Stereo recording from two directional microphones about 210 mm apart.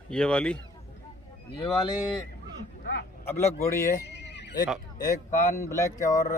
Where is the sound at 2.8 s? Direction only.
50° left (ahead or behind).